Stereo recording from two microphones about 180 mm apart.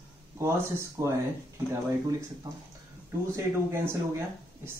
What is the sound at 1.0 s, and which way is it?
Speech, 15° right (ahead or behind).